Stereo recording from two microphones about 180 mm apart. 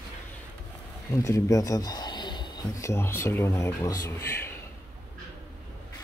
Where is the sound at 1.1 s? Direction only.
15° left (ahead or behind).